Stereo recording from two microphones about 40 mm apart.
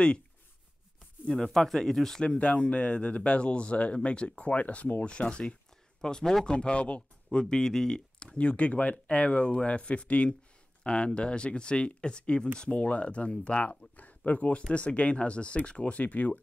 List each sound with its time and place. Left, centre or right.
1.2 s speech: centre
2.2 s speech: left
16.0 s speech: left